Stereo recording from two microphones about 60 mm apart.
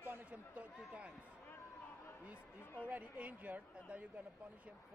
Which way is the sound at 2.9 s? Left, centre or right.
Right.